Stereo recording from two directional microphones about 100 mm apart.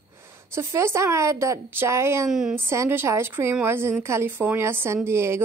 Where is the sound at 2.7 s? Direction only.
25° right (ahead or behind).